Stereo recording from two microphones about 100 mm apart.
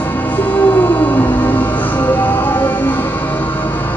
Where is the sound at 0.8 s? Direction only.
15° left (ahead or behind).